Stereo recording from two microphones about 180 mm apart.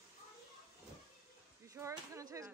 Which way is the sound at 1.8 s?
15° right (ahead or behind).